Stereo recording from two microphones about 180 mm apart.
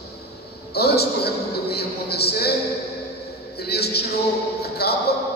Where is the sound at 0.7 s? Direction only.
60° left (ahead or behind).